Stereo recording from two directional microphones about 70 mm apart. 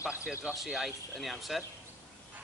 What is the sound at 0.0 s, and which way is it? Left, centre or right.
Speech, centre.